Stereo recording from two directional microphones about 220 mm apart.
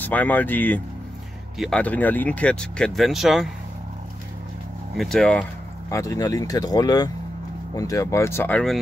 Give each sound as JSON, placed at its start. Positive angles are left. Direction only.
{"t": 0.0, "sound": "speech", "side_deg": 5}
{"t": 4.9, "sound": "speech", "side_deg": 0}